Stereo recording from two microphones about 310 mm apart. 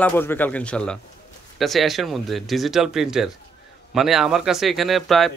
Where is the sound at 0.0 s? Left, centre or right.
Centre.